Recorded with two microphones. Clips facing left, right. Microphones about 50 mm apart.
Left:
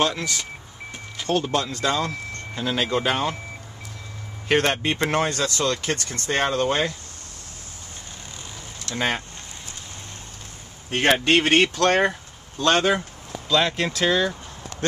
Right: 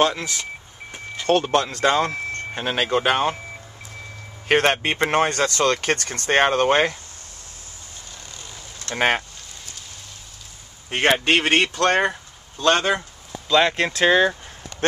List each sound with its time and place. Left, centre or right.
0.0 s speech: centre
1.4 s speech: right
4.5 s speech: right
5.3 s speech: right
8.8 s speech: right
11.3 s speech: centre
14.0 s speech: right